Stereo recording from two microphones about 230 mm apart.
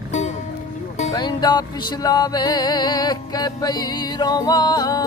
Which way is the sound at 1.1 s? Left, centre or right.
Centre.